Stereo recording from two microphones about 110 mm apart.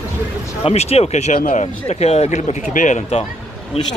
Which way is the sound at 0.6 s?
70° left (ahead or behind).